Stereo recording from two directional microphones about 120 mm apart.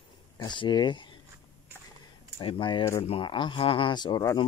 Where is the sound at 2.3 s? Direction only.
45° left (ahead or behind).